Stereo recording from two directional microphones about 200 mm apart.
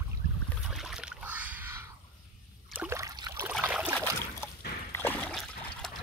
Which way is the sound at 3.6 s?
5° right (ahead or behind).